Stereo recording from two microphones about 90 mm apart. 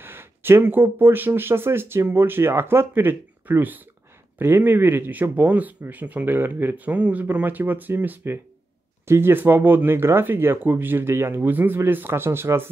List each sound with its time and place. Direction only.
0.0 s speech: 25° right (ahead or behind)